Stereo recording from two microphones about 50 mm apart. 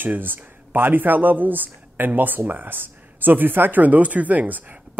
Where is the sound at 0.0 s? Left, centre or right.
Right.